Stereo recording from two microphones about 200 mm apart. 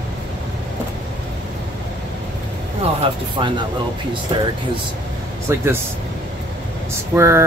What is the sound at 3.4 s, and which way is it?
Speech, 25° right (ahead or behind).